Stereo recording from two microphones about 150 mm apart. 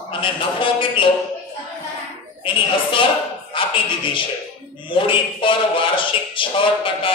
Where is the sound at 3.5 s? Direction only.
35° left (ahead or behind).